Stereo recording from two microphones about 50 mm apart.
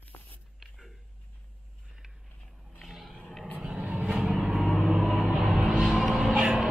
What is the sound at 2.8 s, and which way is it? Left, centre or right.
Vehicle, centre.